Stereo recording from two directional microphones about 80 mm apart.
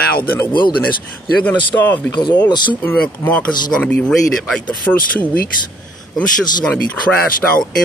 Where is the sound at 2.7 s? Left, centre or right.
Left.